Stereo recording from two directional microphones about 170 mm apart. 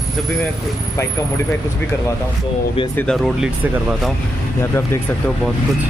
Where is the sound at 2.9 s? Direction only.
5° left (ahead or behind).